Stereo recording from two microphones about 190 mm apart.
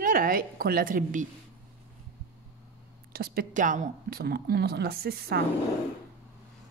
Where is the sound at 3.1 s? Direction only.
50° right (ahead or behind).